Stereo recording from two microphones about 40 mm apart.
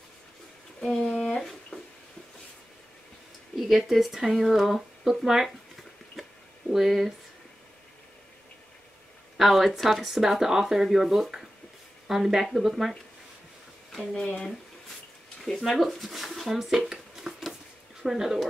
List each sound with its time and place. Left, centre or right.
0.7 s a sound: centre
1.7 s a sound: left
3.5 s speech: centre
6.7 s speech: centre
9.4 s speech: centre
14.1 s speech: left
15.4 s speech: centre